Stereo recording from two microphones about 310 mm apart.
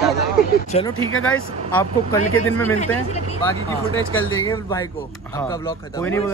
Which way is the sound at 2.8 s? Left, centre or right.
Left.